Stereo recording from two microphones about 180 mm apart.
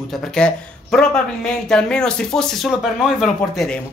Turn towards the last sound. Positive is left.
turn(degrees=0)  # may be behind; listen again after turning